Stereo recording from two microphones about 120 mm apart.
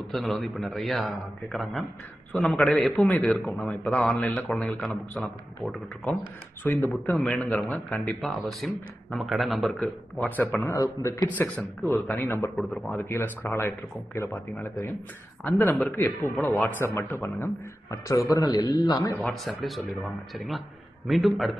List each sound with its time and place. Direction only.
0.1 s speech: centre (ahead or behind)
3.1 s speech: 15° left (ahead or behind)
6.6 s speech: 15° left (ahead or behind)
10.1 s speech: 15° left (ahead or behind)
10.7 s a man's voice: 25° left (ahead or behind)
11.3 s a man's voice: 15° left (ahead or behind); by 19.1 s 30° left (ahead or behind)
19.1 s speech: centre (ahead or behind)